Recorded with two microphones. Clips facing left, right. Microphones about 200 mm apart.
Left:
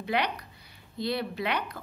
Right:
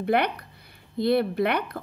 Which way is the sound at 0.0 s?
55° right (ahead or behind).